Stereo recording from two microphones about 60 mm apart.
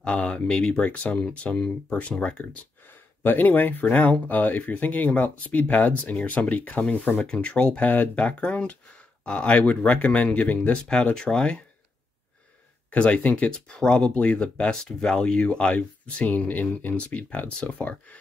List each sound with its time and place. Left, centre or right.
0.0 s speech: centre
3.3 s speech: left; by 11.6 s centre
12.9 s speech: left